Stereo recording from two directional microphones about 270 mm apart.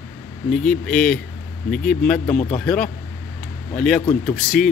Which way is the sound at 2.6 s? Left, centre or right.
Centre.